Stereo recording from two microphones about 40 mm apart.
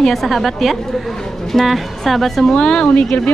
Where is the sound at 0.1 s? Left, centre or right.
Centre.